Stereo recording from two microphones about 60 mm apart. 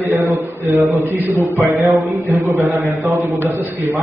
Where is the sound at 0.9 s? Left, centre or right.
Right.